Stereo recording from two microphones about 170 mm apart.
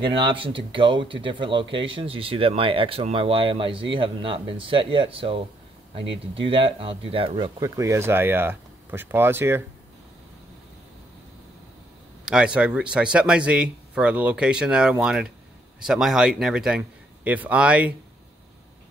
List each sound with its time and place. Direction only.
0.0 s speech: 30° right (ahead or behind); by 9.6 s 15° right (ahead or behind)
12.3 s speech: 5° right (ahead or behind)